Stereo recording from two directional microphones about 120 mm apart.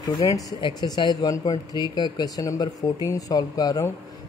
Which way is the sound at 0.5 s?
40° left (ahead or behind).